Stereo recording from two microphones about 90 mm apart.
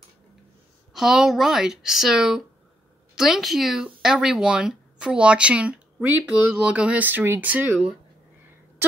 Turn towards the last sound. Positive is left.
turn(degrees=-20)  # may be behind; listen again after turning